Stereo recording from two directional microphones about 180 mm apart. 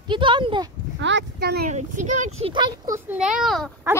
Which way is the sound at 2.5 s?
25° right (ahead or behind).